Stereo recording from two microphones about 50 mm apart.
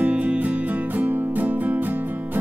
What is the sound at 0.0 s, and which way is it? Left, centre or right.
Music, right.